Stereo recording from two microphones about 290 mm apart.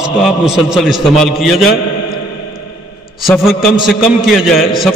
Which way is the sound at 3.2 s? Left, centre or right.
Centre.